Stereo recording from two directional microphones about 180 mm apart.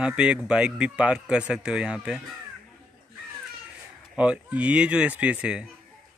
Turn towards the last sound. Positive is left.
turn(degrees=-5)  # may be behind; listen again after turning